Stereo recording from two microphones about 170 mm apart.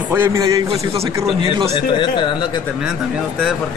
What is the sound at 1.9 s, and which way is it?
Speech, 25° left (ahead or behind).